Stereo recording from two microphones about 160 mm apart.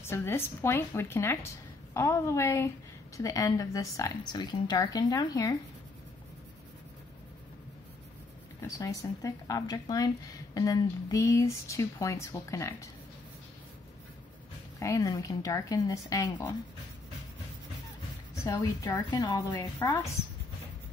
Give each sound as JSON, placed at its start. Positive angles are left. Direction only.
{"t": 0.0, "sound": "a woman's voice", "side_deg": 15}
{"t": 8.6, "sound": "speech", "side_deg": 20}
{"t": 14.8, "sound": "speech", "side_deg": 20}
{"t": 18.3, "sound": "a woman's voice", "side_deg": 20}